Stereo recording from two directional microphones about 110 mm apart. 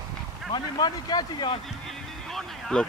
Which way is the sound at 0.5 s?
40° left (ahead or behind).